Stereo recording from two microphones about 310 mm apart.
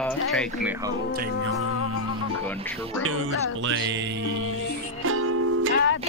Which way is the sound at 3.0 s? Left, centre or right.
Right.